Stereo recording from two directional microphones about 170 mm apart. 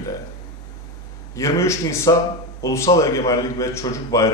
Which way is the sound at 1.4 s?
15° left (ahead or behind).